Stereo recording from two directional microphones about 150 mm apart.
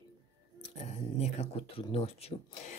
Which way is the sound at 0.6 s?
45° left (ahead or behind).